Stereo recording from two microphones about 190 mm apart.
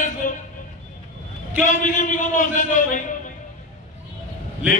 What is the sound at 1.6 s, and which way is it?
A man's voice, 45° left (ahead or behind).